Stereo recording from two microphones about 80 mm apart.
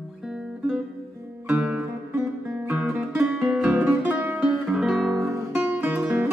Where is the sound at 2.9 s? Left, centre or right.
Right.